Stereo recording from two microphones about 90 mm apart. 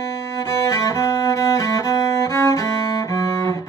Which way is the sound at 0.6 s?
30° left (ahead or behind).